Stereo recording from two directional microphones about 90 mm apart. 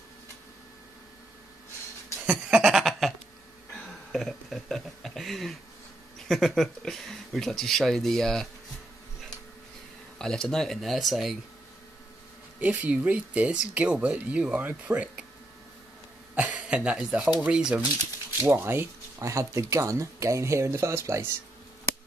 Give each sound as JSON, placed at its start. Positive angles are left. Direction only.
{"t": 2.3, "sound": "goat", "side_deg": -5}
{"t": 4.1, "sound": "a sound", "side_deg": 0}
{"t": 6.2, "sound": "speech", "side_deg": 0}
{"t": 10.1, "sound": "speech", "side_deg": 5}
{"t": 12.5, "sound": "speech", "side_deg": -15}
{"t": 16.3, "sound": "a sound", "side_deg": -15}
{"t": 17.4, "sound": "speech", "side_deg": -10}
{"t": 18.5, "sound": "speech", "side_deg": -25}